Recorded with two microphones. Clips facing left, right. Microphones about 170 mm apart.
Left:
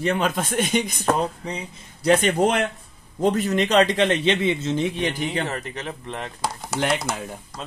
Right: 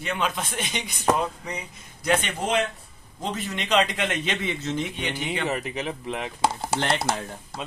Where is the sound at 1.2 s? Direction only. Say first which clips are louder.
Left 3 dB; 30° left (ahead or behind).